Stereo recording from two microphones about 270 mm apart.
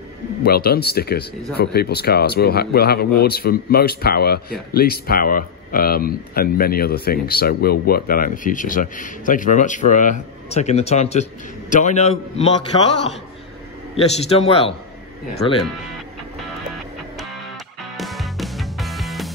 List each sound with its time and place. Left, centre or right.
0.4 s a man's voice: left
13.9 s a man's voice: left
17.9 s music: centre